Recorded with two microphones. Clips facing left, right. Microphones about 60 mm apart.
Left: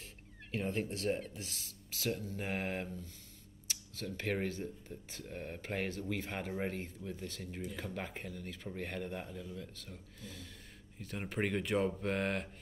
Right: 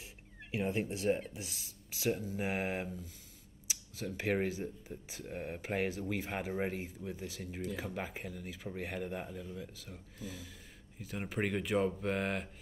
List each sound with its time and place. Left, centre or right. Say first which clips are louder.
0.5 s speech: right 2 dB; centre